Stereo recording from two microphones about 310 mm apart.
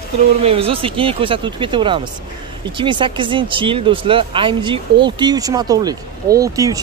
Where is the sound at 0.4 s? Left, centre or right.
Centre.